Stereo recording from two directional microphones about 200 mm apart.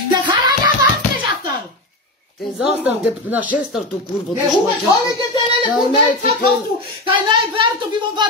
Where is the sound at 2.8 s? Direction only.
10° right (ahead or behind).